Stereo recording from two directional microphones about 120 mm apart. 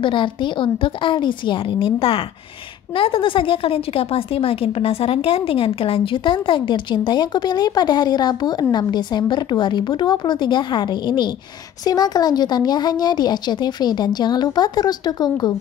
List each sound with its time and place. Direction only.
0.0 s a woman's voice: 45° left (ahead or behind)